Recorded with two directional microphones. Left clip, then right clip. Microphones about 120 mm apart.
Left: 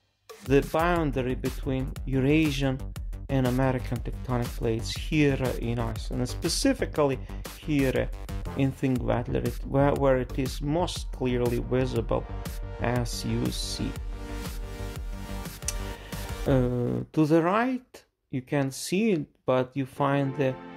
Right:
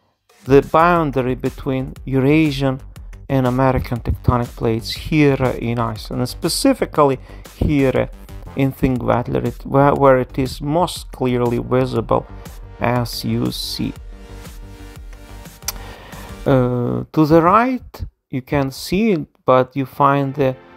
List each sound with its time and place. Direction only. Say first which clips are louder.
0.5 s speech: right 12 dB; 45° right (ahead or behind)
15.7 s music: right 8 dB; 40° right (ahead or behind)
16.4 s speech: right 10 dB; 40° right (ahead or behind)